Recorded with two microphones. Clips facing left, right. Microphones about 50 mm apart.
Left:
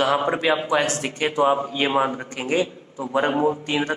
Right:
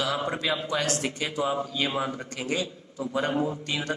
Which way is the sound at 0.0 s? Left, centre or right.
Left.